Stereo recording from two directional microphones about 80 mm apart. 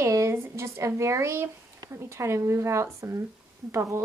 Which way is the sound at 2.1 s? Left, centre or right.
Right.